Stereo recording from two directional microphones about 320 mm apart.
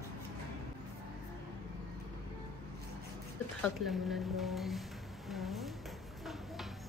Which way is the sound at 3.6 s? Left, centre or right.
Centre.